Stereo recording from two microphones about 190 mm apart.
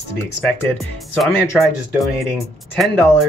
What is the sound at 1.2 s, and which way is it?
Speech, centre (ahead or behind).